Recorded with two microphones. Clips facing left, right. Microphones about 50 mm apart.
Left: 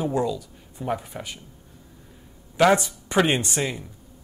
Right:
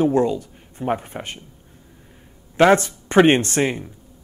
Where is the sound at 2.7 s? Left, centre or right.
Right.